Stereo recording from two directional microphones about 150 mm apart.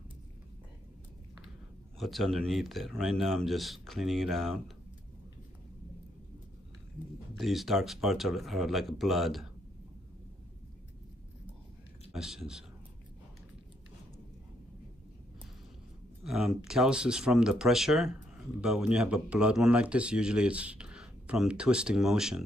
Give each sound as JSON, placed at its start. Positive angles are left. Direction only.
{"t": 2.0, "sound": "speech", "side_deg": 0}
{"t": 7.3, "sound": "speech", "side_deg": 0}
{"t": 12.1, "sound": "speech", "side_deg": 0}
{"t": 16.3, "sound": "speech", "side_deg": 0}